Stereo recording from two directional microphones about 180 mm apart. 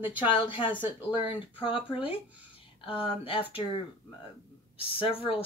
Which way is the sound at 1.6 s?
30° left (ahead or behind).